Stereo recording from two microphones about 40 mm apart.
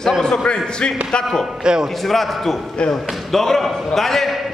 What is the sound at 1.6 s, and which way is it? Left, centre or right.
Speech, right.